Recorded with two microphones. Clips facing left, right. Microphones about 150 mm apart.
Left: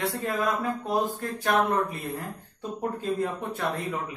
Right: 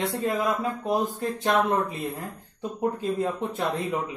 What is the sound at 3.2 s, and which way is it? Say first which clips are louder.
Speech: right 2 dB; 20° right (ahead or behind).